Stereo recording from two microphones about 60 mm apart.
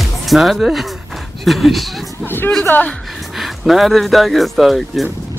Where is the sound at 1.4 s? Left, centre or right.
Centre.